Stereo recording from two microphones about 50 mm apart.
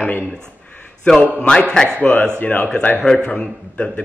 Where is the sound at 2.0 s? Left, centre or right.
Left.